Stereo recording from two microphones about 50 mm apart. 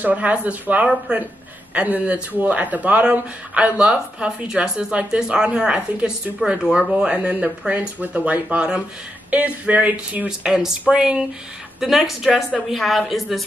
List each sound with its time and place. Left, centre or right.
0.0 s speech: right
10.2 s speech: centre
11.8 s a woman's voice: centre